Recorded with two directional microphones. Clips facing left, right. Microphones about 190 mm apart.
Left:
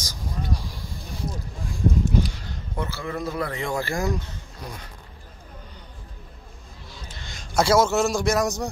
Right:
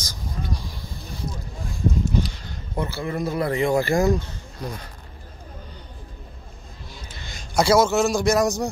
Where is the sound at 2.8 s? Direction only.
15° right (ahead or behind).